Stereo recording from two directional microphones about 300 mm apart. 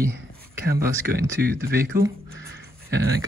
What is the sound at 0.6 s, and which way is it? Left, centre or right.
Speech, right.